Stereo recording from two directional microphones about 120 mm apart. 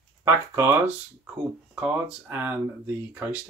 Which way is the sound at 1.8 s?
15° right (ahead or behind).